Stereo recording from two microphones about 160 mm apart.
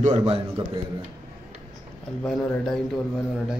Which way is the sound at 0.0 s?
40° right (ahead or behind).